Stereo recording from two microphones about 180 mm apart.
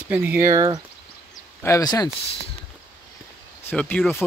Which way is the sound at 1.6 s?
20° left (ahead or behind).